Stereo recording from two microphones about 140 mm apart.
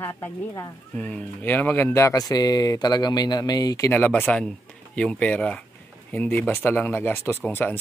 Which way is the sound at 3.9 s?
10° left (ahead or behind).